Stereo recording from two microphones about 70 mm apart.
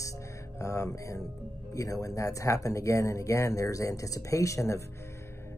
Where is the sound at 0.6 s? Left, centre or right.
Left.